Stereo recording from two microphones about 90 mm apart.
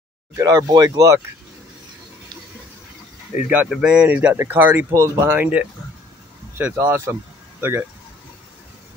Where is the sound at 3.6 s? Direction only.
10° right (ahead or behind).